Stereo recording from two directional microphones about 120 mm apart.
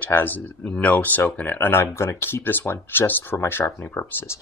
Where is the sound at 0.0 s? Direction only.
15° left (ahead or behind).